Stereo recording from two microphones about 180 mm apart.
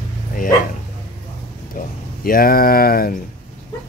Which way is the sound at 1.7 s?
55° left (ahead or behind).